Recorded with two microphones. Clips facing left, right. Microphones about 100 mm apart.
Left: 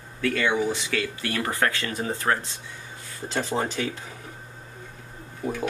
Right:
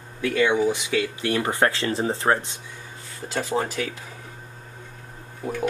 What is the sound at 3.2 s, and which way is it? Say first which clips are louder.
Speech: even; 10° right (ahead or behind).